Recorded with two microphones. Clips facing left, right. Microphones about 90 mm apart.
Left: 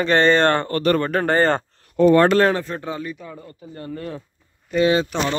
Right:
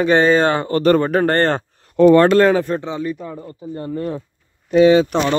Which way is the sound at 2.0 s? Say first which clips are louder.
Right 4 dB; 90° right.